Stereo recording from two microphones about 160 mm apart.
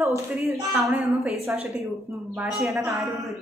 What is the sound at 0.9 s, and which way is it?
Speech, 5° right (ahead or behind).